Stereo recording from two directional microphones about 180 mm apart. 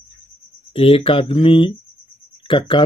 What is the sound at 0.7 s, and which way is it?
Speech, 30° left (ahead or behind).